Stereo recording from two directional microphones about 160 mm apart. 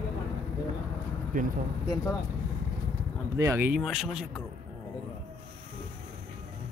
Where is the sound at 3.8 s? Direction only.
Centre (ahead or behind).